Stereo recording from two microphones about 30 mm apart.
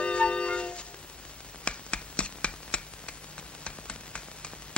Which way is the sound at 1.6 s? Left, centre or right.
Left.